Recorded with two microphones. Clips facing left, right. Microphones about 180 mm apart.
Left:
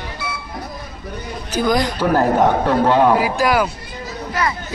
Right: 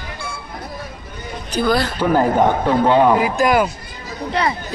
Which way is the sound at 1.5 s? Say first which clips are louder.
Even; 15° left (ahead or behind).